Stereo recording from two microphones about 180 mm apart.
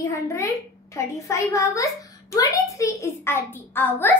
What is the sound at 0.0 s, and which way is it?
A child's voice, 15° left (ahead or behind).